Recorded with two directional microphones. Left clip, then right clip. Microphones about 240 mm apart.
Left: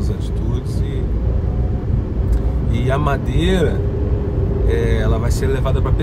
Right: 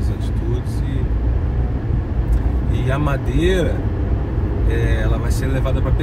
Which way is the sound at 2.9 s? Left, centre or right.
Centre.